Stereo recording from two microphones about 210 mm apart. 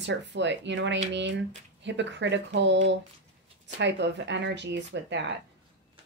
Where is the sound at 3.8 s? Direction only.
55° right (ahead or behind).